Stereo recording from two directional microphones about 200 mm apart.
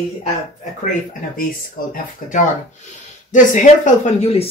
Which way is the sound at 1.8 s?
45° left (ahead or behind).